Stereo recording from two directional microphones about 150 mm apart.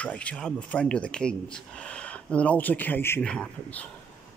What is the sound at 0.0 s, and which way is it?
Speech, 10° left (ahead or behind).